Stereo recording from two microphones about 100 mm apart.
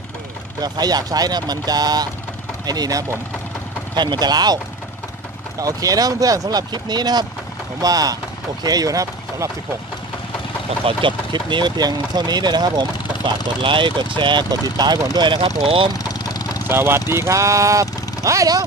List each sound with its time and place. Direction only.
0.6 s speech: 40° right (ahead or behind)
3.9 s speech: 45° right (ahead or behind)
5.6 s speech: 35° right (ahead or behind)
10.9 s speech: 55° right (ahead or behind)
13.6 s speech: 55° right (ahead or behind)
16.0 s vehicle: 40° left (ahead or behind)
16.6 s speech: 25° right (ahead or behind)